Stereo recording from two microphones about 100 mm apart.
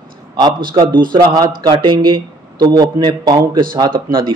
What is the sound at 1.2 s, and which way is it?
A man's voice, 40° right (ahead or behind).